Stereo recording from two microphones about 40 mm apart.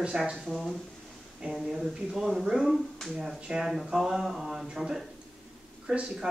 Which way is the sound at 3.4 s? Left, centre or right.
Centre.